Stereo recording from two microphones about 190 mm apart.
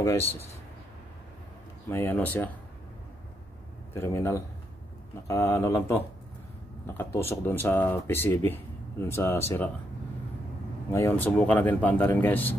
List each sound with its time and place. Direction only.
1.9 s speech: 10° left (ahead or behind)
3.9 s speech: 15° left (ahead or behind)
10.9 s speech: 10° left (ahead or behind)